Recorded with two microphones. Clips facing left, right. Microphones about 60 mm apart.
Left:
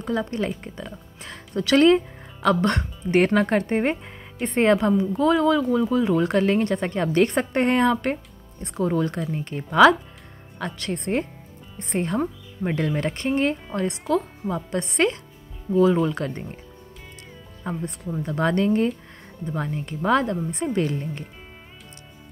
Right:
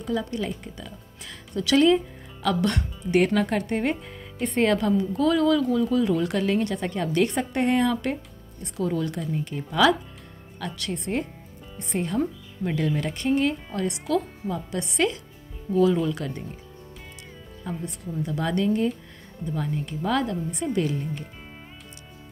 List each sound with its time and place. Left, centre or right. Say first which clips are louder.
0.0 s speech: left 2 dB; left
15.7 s speech: left 2 dB; left
17.6 s speech: left 3 dB; left